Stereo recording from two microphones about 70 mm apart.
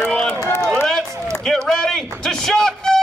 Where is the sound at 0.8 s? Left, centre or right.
Centre.